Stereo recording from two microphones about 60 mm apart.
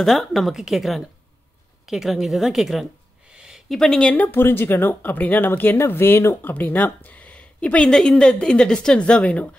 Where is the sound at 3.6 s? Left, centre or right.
Centre.